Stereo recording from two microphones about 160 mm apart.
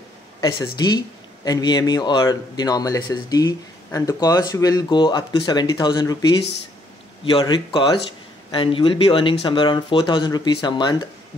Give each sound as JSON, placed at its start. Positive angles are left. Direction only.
{"t": 0.4, "sound": "speech", "side_deg": 25}